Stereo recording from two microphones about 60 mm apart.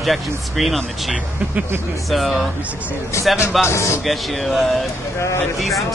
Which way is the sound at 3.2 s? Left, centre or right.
Left.